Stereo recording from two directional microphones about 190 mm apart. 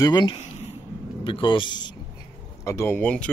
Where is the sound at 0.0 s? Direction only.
20° left (ahead or behind).